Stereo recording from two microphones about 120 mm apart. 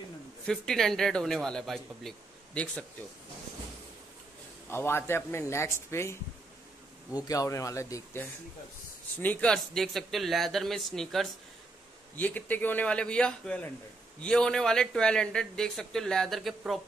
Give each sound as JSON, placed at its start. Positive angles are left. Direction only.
{"t": 0.5, "sound": "speech", "side_deg": 5}
{"t": 4.6, "sound": "speech", "side_deg": 20}
{"t": 9.2, "sound": "speech", "side_deg": 10}
{"t": 12.2, "sound": "a man's voice", "side_deg": 15}